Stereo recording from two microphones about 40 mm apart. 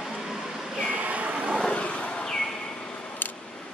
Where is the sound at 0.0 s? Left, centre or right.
Centre.